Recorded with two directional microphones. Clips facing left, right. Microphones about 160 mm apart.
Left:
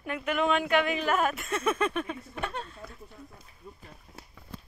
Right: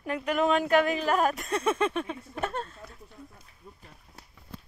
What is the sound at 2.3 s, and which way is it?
Speech, 45° right (ahead or behind).